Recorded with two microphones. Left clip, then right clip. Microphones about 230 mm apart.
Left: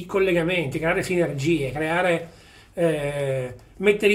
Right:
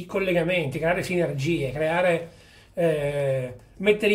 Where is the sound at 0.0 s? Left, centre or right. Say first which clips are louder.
Left 3 dB; centre.